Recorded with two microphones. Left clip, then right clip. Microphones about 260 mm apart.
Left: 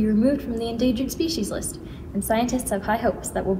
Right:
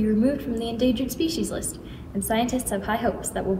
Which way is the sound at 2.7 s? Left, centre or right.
Centre.